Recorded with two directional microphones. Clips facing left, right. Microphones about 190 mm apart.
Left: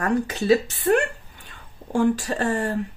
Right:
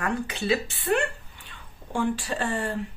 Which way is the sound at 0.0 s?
40° left (ahead or behind).